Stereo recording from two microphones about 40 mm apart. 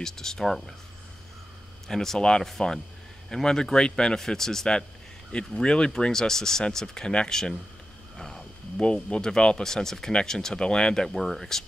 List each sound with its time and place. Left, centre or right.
0.0 s speech: centre
1.9 s speech: centre
2.1 s speech: left
8.7 s speech: left
11.1 s speech: centre